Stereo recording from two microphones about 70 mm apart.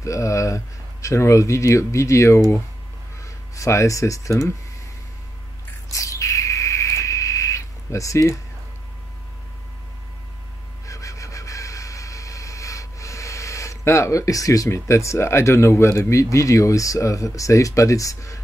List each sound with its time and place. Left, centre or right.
0.0 s speech: left
5.9 s bird: left
10.9 s vehicle: left